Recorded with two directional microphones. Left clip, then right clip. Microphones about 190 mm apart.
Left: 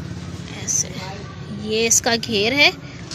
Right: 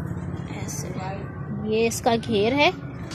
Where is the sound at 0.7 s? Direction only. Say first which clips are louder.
Left 19 dB; 20° right (ahead or behind).